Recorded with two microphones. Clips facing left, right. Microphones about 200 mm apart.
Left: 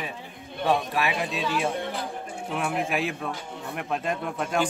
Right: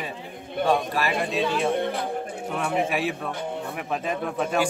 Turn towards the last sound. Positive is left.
turn(degrees=0)  # may be behind; listen again after turning